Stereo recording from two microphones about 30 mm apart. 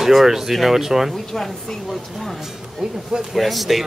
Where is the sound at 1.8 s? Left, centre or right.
Centre.